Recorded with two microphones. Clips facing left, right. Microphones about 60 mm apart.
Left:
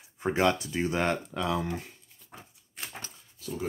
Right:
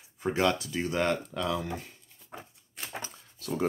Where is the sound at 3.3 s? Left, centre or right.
Right.